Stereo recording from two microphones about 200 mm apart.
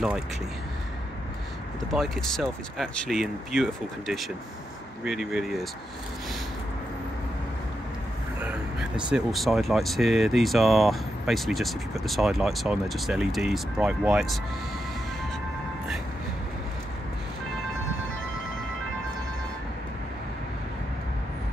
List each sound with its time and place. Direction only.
2.0 s speech: centre (ahead or behind)
5.0 s speech: centre (ahead or behind)
8.4 s speech: 5° right (ahead or behind)